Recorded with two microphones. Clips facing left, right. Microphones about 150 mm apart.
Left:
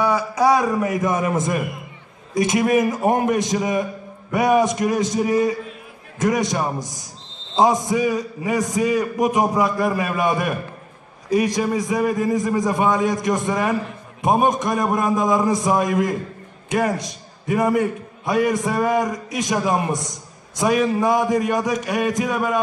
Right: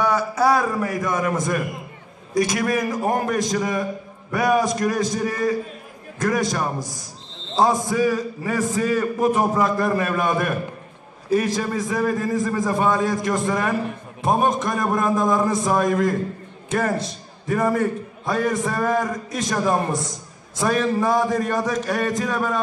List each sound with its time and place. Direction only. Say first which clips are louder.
0.0 s a man's voice: left 1 dB; 10° left (ahead or behind)